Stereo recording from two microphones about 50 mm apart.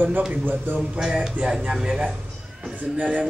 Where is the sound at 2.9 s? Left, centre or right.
Right.